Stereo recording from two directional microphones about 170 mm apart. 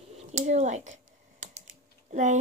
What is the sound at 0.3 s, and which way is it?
Speech, 45° right (ahead or behind).